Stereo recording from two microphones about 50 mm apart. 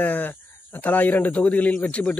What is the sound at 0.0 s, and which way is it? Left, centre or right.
Speech, left.